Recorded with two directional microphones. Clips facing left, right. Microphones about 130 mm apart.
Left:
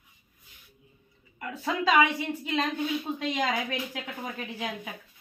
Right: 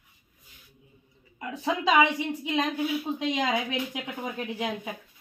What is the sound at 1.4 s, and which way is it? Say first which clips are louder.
A woman's voice: right 1 dB; 20° right (ahead or behind).